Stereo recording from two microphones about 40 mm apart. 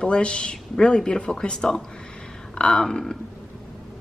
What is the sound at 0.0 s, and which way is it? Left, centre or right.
Speech, left.